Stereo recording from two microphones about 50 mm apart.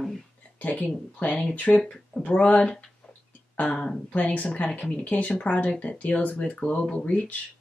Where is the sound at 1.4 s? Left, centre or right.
Left.